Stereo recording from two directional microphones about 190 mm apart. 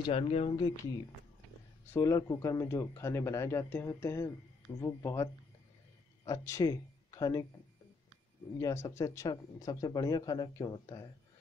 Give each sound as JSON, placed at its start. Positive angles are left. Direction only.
{"t": 0.0, "sound": "speech", "side_deg": 30}
{"t": 1.9, "sound": "speech", "side_deg": 15}
{"t": 8.5, "sound": "speech", "side_deg": 15}